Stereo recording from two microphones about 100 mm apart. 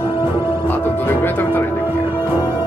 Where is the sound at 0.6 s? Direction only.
20° left (ahead or behind).